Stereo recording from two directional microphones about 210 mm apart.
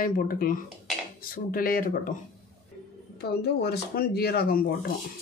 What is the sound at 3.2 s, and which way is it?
Speech, 50° left (ahead or behind).